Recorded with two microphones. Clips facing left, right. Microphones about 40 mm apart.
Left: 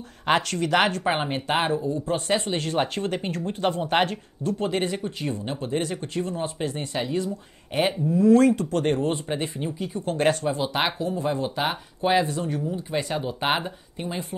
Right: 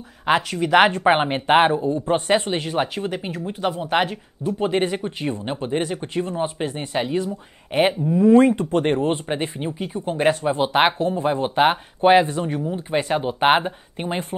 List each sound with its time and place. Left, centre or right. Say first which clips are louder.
0.2 s speech: right 3 dB; centre
0.7 s speech: right 7 dB; right
2.5 s speech: right 2 dB; centre
10.0 s speech: right 3 dB; centre
10.5 s speech: right 7 dB; right